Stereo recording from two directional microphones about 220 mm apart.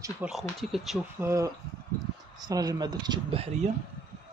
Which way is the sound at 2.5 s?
15° right (ahead or behind).